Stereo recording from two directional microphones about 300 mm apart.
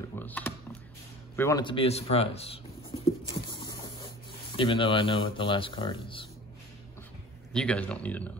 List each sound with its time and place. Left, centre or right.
0.1 s mechanisms: centre
1.3 s speech: centre
2.9 s patter: centre
4.6 s speech: centre
7.5 s speech: centre